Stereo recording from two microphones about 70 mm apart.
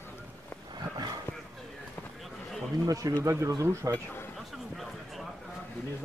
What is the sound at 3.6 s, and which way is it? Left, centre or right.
Speech, right.